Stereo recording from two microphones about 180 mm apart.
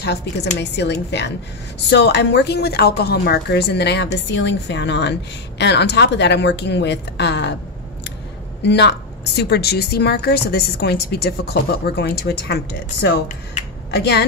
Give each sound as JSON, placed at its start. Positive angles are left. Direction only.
{"t": 0.0, "sound": "a woman's voice", "side_deg": 70}
{"t": 8.6, "sound": "a woman's voice", "side_deg": 70}